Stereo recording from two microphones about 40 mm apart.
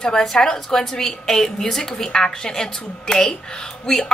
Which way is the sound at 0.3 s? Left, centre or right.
Centre.